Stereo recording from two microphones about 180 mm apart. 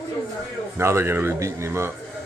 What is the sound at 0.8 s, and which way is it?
Speech, 15° right (ahead or behind).